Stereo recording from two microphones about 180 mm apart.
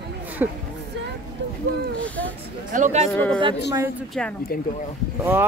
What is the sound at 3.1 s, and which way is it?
Speech, 5° left (ahead or behind).